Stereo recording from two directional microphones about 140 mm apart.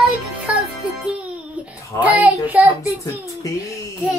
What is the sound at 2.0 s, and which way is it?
Speech, 10° right (ahead or behind).